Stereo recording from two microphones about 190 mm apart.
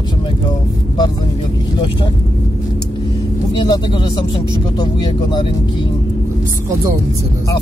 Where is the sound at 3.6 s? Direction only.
25° left (ahead or behind).